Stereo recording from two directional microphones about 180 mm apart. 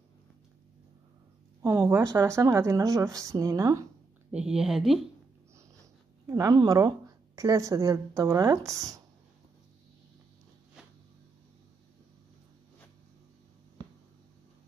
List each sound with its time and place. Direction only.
1.6 s a woman's voice: 15° right (ahead or behind)
4.3 s speech: 5° right (ahead or behind)
6.2 s speech: 20° right (ahead or behind)